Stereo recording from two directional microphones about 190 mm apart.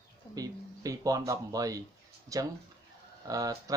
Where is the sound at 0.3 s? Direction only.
20° right (ahead or behind).